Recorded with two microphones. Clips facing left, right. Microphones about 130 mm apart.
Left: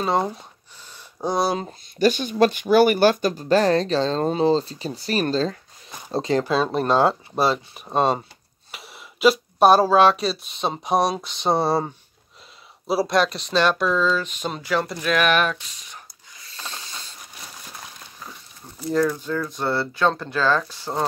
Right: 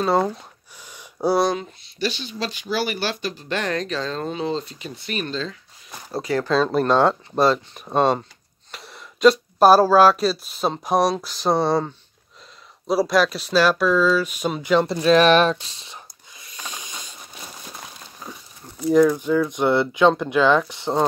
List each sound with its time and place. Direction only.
0.9 s a sound: 10° right (ahead or behind)
1.5 s speech: 40° left (ahead or behind)
6.0 s speech: 20° left (ahead or behind)
6.5 s speech: 5° left (ahead or behind)
12.8 s a sound: centre (ahead or behind); by 18.3 s 15° right (ahead or behind)
18.9 s speech: 15° right (ahead or behind)